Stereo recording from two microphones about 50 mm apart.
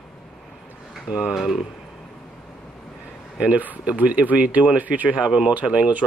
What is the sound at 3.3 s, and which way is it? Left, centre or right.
Speech, right.